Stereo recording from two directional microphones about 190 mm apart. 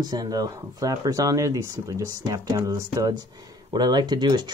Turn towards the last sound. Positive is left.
turn(degrees=-25)  # may be behind; listen again after turning